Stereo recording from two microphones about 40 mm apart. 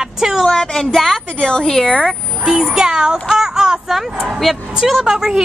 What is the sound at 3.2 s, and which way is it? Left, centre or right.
Child singing, centre.